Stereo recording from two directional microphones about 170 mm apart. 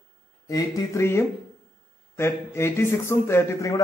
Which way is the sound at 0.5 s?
20° left (ahead or behind).